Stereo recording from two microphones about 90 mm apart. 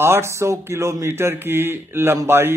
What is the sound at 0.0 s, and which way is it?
A man's voice, 30° right (ahead or behind).